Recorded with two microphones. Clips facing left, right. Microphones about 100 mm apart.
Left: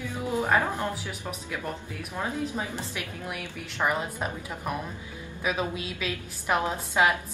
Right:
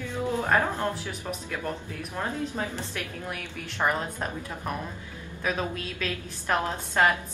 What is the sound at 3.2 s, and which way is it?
A woman's voice, 5° left (ahead or behind).